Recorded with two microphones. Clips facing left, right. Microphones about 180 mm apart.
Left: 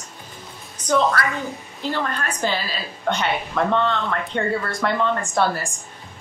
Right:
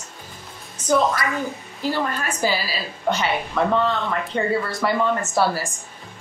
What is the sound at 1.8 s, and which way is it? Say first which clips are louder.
A woman's voice: right 2 dB; 10° right (ahead or behind).